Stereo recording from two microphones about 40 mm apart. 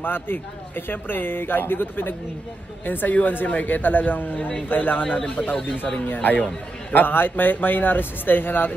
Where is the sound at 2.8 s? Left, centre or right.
Left.